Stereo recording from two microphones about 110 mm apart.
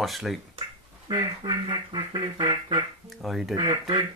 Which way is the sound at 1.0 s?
40° right (ahead or behind).